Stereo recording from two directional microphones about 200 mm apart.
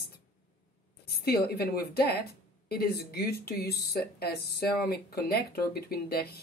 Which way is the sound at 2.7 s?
50° left (ahead or behind).